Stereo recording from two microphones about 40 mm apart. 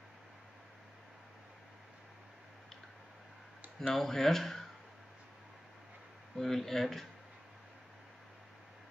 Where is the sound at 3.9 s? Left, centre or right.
Centre.